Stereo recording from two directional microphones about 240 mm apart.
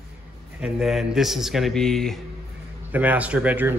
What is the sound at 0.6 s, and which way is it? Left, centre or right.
Speech, centre.